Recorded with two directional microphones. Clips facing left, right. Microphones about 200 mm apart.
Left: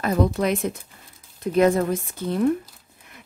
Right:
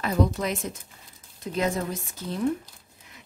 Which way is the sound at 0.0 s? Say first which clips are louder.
Left 4 dB; 55° left (ahead or behind).